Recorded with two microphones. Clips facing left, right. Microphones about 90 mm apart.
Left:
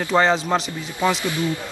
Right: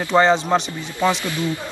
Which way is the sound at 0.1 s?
Centre (ahead or behind).